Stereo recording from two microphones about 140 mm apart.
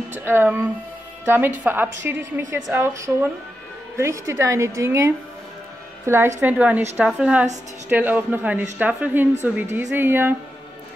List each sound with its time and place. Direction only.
0.1 s a woman's voice: 15° right (ahead or behind)